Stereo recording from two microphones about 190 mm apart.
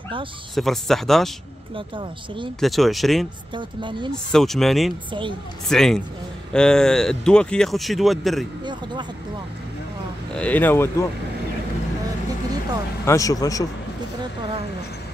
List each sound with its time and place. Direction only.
0.6 s speech: centre (ahead or behind)
1.8 s speech: 25° right (ahead or behind)
2.6 s speech: centre (ahead or behind)
3.5 s speech: 25° right (ahead or behind)
4.1 s speech: centre (ahead or behind)
10.3 s speech: 5° left (ahead or behind)
13.0 s speech: 15° left (ahead or behind)